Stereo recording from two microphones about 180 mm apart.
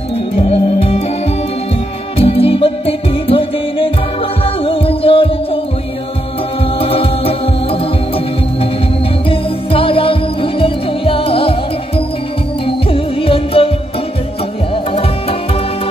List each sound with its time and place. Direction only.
0.4 s music: 35° left (ahead or behind)
2.1 s music: 35° left (ahead or behind)
6.8 s music: 30° left (ahead or behind)
9.3 s music: 30° left (ahead or behind)
12.6 s music: 30° left (ahead or behind)
14.9 s music: 30° left (ahead or behind)